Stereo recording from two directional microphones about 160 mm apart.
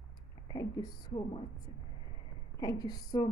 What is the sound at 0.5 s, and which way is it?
Speech, 20° left (ahead or behind).